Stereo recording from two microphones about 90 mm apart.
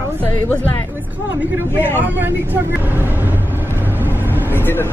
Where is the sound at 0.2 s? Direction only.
20° left (ahead or behind).